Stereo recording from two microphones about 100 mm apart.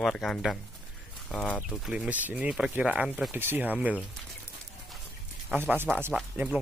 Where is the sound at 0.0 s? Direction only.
5° left (ahead or behind).